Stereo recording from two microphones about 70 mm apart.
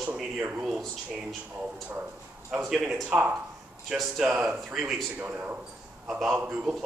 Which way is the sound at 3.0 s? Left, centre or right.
Centre.